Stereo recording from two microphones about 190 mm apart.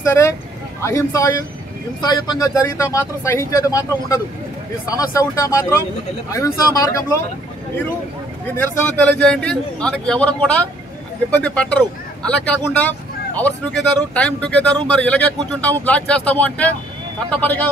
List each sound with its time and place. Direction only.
0.0 s speech: 15° left (ahead or behind)
8.5 s a man's voice: 5° left (ahead or behind)